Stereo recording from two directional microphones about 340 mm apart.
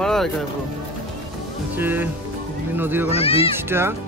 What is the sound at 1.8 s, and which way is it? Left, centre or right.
Speech, centre.